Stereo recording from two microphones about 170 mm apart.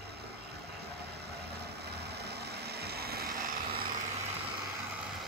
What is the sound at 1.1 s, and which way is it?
Vehicle, 70° right (ahead or behind).